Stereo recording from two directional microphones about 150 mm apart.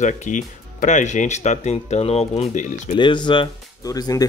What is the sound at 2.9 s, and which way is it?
Speech, 30° left (ahead or behind).